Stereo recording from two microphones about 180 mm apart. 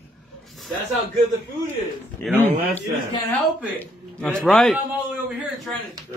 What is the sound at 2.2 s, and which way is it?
Speech, 10° left (ahead or behind).